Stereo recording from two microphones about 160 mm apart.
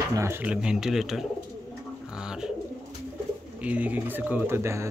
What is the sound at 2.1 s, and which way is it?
Bird, 5° right (ahead or behind).